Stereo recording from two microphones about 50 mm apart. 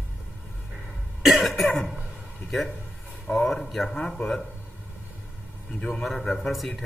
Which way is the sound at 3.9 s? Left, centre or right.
Centre.